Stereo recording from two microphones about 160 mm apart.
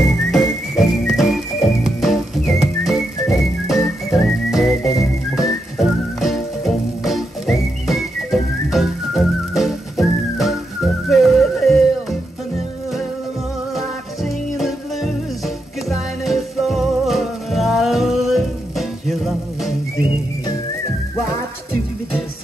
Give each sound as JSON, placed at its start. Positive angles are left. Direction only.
{"t": 0.0, "sound": "music", "side_deg": 0}
{"t": 13.7, "sound": "music", "side_deg": 0}